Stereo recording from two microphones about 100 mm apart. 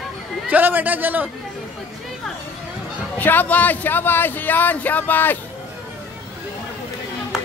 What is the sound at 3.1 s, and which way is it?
Speech, 20° left (ahead or behind).